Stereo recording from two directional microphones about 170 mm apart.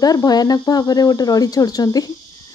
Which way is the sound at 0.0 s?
20° left (ahead or behind).